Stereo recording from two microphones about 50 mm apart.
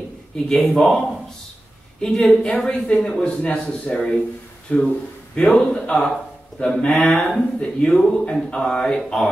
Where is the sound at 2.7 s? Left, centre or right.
Left.